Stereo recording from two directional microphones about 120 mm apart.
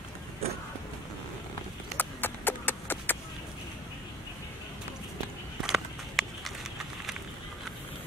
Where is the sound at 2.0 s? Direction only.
15° left (ahead or behind).